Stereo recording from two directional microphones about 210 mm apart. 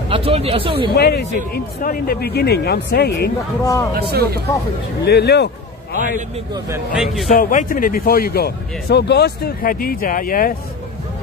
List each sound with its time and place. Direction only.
0.1 s speech: 30° right (ahead or behind)
0.9 s speech: 50° left (ahead or behind)
3.6 s a man's voice: 15° left (ahead or behind)
3.9 s speech: 50° right (ahead or behind)
5.0 s speech: 50° left (ahead or behind)
5.9 s a man's voice: 35° right (ahead or behind)
7.2 s speech: 40° left (ahead or behind)